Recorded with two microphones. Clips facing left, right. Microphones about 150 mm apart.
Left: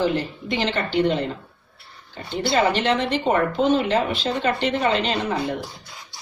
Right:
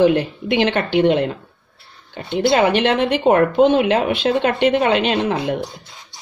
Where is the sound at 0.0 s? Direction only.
65° right (ahead or behind).